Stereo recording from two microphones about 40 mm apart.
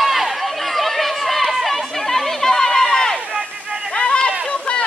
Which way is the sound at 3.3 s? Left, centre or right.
Right.